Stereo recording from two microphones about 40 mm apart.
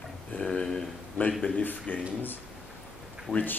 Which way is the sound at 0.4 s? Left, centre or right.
Left.